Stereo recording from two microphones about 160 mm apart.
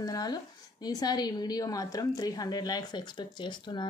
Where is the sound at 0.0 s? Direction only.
25° left (ahead or behind).